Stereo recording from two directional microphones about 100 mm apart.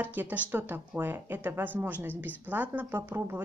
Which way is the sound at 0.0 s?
20° right (ahead or behind).